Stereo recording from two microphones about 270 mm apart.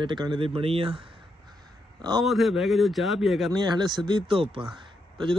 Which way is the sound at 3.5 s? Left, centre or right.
Centre.